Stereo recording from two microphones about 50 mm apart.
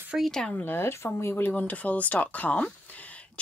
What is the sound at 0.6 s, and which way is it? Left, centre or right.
Speech, left.